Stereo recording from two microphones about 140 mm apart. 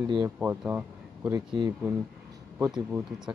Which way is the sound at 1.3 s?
35° right (ahead or behind).